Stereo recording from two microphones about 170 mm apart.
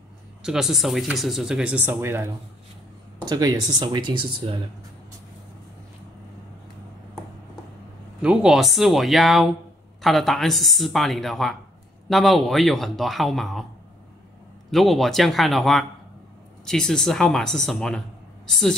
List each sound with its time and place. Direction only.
0.4 s speech: 5° right (ahead or behind)
3.3 s speech: 25° right (ahead or behind)
8.2 s speech: 5° right (ahead or behind)
14.7 s speech: centre (ahead or behind)